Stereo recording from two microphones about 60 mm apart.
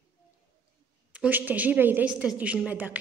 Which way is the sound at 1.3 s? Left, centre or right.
Right.